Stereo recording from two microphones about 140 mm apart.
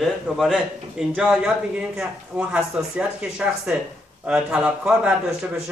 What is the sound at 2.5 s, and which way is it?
A man's voice, 10° right (ahead or behind).